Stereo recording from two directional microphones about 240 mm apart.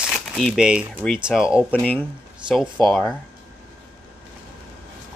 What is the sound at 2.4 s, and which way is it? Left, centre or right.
Speech, centre.